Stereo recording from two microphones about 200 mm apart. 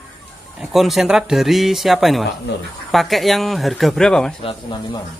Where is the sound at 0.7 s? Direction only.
Centre (ahead or behind).